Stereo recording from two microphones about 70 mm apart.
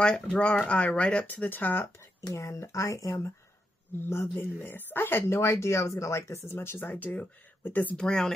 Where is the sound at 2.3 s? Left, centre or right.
Left.